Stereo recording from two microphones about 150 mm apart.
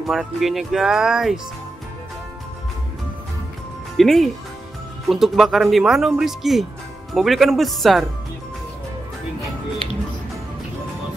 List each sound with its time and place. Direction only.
0.0 s speech: centre (ahead or behind)
3.9 s speech: centre (ahead or behind)